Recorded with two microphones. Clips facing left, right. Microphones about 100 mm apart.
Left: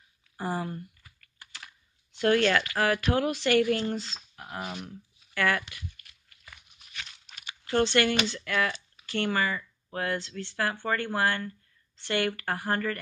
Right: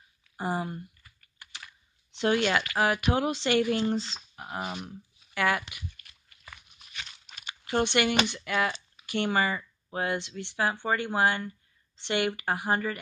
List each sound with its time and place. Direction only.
0.4 s speech: 20° right (ahead or behind)
2.1 s speech: 15° right (ahead or behind)
6.9 s tearing: 25° right (ahead or behind)
7.6 s speech: 15° right (ahead or behind)